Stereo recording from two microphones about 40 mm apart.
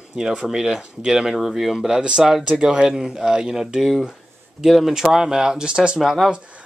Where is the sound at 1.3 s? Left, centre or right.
Centre.